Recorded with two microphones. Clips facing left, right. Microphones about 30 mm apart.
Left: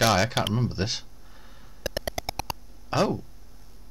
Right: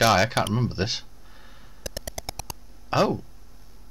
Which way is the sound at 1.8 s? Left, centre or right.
Left.